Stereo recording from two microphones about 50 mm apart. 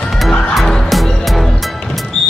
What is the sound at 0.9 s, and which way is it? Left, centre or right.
Music, centre.